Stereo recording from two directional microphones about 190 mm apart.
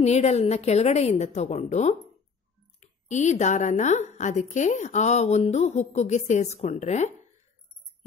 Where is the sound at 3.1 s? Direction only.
40° left (ahead or behind).